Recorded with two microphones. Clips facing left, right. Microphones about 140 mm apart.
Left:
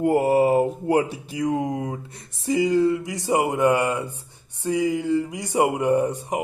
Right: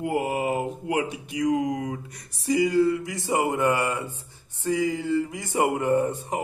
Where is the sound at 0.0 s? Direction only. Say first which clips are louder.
Left 8 dB; 40° left (ahead or behind).